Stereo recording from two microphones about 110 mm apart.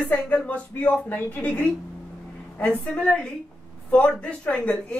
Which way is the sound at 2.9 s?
10° left (ahead or behind).